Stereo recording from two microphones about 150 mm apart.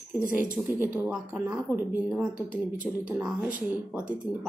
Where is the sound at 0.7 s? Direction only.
10° right (ahead or behind).